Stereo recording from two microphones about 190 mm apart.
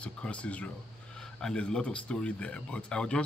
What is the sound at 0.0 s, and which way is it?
Speech, 5° left (ahead or behind).